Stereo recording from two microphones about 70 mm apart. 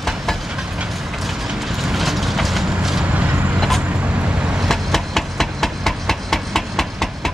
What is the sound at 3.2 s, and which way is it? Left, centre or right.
Vehicle, right.